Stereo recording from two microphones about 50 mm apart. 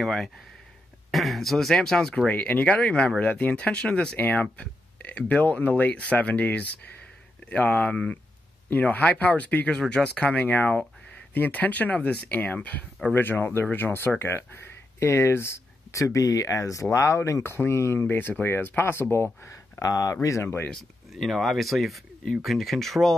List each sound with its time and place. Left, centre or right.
0.0 s speech: centre
2.2 s speech: left
4.2 s speech: left
7.9 s speech: left
8.6 s speech: left
9.7 s speech: centre
13.1 s speech: left
16.9 s speech: left
17.4 s speech: left
19.4 s speech: left
21.3 s speech: centre